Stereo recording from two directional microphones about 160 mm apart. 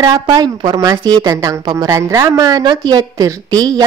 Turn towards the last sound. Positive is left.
turn(degrees=-25)  # may be behind; listen again after turning